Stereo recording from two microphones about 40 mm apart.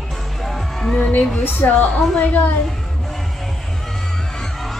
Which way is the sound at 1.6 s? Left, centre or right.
Left.